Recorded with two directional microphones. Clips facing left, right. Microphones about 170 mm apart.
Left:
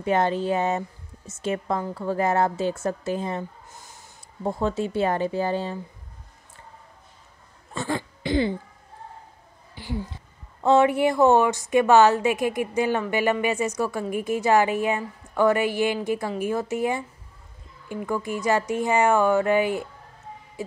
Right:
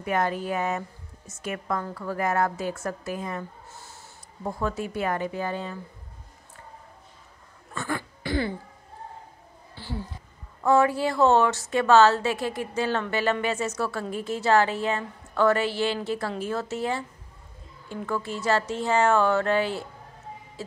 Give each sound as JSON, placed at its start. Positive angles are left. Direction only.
{"t": 0.0, "sound": "a woman's voice", "side_deg": 25}
{"t": 3.7, "sound": "speech", "side_deg": 15}
{"t": 7.7, "sound": "throat clearing", "side_deg": 20}
{"t": 9.8, "sound": "a sound", "side_deg": 15}
{"t": 10.6, "sound": "a woman's voice", "side_deg": 25}